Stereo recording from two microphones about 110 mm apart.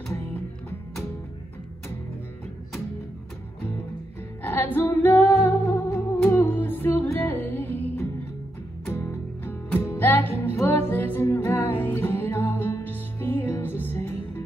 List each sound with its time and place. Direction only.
0.1 s music: 20° left (ahead or behind)
4.4 s music: 20° left (ahead or behind)